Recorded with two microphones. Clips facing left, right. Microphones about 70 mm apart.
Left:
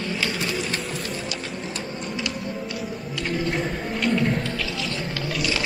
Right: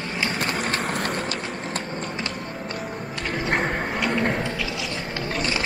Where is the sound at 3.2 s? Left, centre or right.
Right.